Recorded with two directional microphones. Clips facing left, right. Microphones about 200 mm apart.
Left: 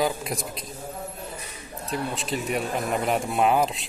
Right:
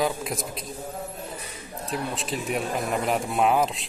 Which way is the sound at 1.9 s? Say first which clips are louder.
Left 1 dB; centre (ahead or behind).